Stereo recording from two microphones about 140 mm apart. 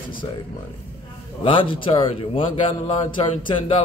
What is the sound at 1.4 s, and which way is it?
Speech, 40° left (ahead or behind).